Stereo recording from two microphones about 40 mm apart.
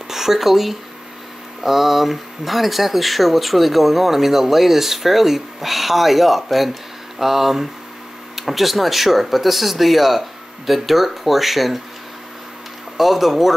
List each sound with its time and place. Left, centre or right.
0.1 s speech: centre
12.9 s speech: centre